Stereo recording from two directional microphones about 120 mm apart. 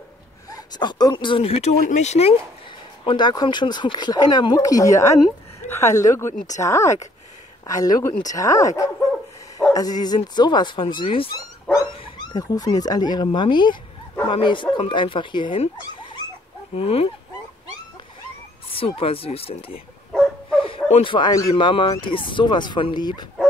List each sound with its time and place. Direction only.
0.7 s speech: 35° left (ahead or behind); by 2.3 s 65° left (ahead or behind)
3.1 s speech: 40° left (ahead or behind)
16.7 s speech: 55° left (ahead or behind)
18.7 s speech: 50° left (ahead or behind)
20.1 s dog: centre (ahead or behind)
20.6 s a sound: 50° left (ahead or behind)
21.3 s speech: 35° left (ahead or behind)